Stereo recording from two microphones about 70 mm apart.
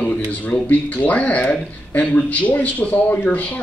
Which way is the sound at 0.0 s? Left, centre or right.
Left.